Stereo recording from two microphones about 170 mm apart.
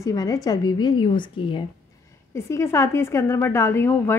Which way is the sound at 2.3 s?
15° left (ahead or behind).